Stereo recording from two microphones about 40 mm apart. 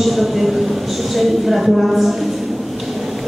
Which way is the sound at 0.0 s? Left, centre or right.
Centre.